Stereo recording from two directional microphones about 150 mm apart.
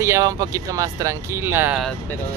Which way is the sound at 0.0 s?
20° right (ahead or behind).